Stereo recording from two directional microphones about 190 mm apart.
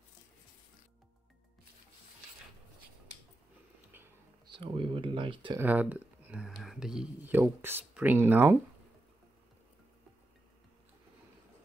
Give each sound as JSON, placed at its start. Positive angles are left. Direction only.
{"t": 4.5, "sound": "speech", "side_deg": -25}
{"t": 5.6, "sound": "speech", "side_deg": -10}